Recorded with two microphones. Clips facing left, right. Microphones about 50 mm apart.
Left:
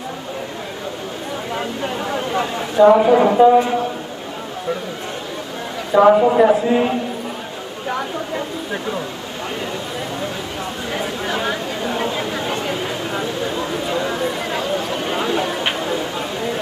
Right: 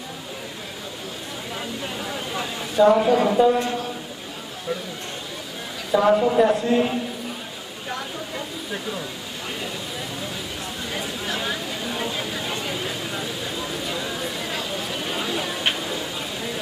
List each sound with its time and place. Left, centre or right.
1.5 s a sound: left
2.8 s speech: centre
3.1 s speech: left
5.9 s speech: left
6.5 s speech: centre
10.9 s a sound: centre
14.8 s chatter: centre